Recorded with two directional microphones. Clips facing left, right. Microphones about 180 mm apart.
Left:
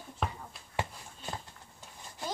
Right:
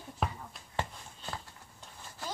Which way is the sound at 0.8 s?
15° left (ahead or behind).